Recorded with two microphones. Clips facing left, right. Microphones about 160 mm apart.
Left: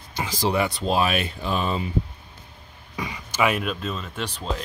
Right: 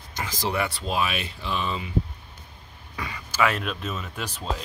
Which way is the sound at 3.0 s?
15° left (ahead or behind).